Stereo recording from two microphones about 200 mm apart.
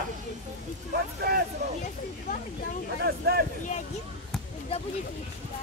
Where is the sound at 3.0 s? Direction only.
50° right (ahead or behind).